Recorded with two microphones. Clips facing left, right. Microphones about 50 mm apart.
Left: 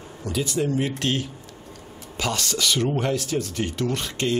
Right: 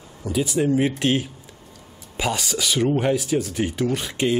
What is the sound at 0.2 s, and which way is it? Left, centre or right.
Speech, centre.